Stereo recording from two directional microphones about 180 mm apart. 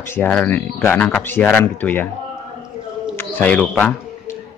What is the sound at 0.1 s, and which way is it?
Speech, 10° left (ahead or behind).